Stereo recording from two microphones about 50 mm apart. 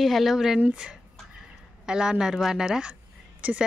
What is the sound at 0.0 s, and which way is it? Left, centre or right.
Speech, centre.